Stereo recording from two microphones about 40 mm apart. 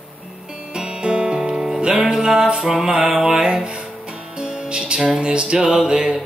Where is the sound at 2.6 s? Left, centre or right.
Centre.